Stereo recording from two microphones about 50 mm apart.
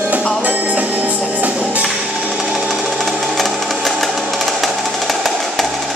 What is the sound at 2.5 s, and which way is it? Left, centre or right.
Sewing machine, centre.